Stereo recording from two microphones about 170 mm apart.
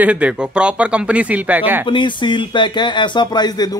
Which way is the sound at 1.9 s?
30° left (ahead or behind).